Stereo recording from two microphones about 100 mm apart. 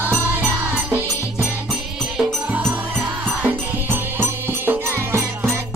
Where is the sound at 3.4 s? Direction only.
20° right (ahead or behind).